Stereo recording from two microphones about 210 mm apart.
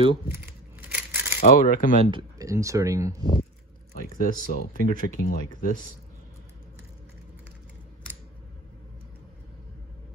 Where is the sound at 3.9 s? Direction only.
40° left (ahead or behind).